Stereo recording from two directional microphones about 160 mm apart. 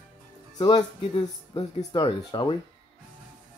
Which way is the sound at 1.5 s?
30° left (ahead or behind).